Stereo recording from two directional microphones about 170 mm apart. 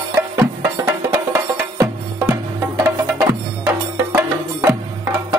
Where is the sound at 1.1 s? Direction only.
10° right (ahead or behind).